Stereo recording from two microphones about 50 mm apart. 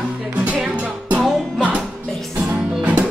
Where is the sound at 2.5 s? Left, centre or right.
Centre.